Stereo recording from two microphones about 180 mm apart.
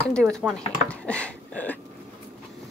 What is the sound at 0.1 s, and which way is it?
Speech, centre (ahead or behind).